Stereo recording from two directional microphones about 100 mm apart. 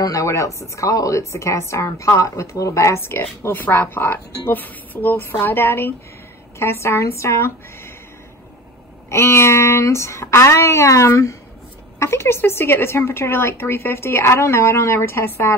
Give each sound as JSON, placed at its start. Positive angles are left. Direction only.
{"t": 0.0, "sound": "speech", "side_deg": 35}
{"t": 9.1, "sound": "speech", "side_deg": 25}